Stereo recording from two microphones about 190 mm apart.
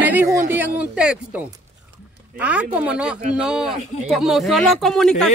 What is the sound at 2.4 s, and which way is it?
Speech, 5° right (ahead or behind).